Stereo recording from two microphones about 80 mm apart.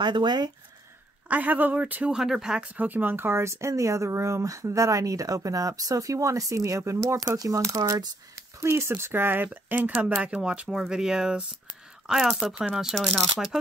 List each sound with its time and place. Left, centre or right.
0.0 s speech: right
1.3 s speech: right
2.0 s speech: centre; by 8.1 s right
8.5 s speech: right; by 13.6 s centre